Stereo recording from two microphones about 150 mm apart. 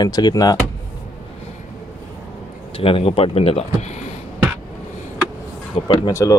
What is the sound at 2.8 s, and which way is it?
Speech, 40° left (ahead or behind).